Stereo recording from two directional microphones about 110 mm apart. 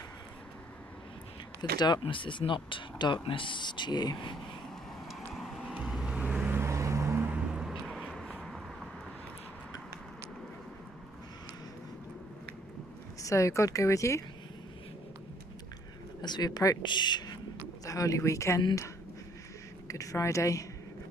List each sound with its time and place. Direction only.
1.6 s speech: 40° left (ahead or behind)
5.0 s vehicle: centre (ahead or behind)
7.9 s vehicle: centre (ahead or behind)
13.2 s speech: 30° left (ahead or behind)
16.2 s speech: 40° left (ahead or behind)
17.8 s speech: 30° left (ahead or behind)
19.9 s speech: 30° left (ahead or behind)